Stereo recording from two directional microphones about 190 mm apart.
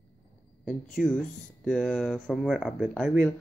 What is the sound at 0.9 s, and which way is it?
Speech, 5° left (ahead or behind).